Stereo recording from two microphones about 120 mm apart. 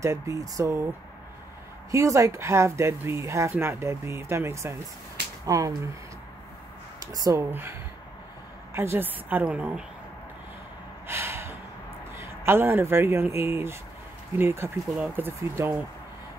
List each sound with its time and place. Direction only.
0.0 s speech: 25° right (ahead or behind)
1.9 s speech: 25° right (ahead or behind)
7.0 s speech: 30° right (ahead or behind)
8.7 s a woman's voice: 20° right (ahead or behind)
11.1 s gasp: 20° right (ahead or behind)
12.2 s a woman's voice: 20° right (ahead or behind)